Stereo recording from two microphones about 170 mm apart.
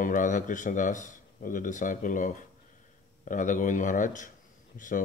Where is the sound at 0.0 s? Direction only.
50° left (ahead or behind).